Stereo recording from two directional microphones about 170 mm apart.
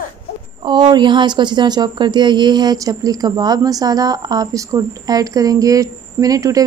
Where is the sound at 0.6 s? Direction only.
25° right (ahead or behind).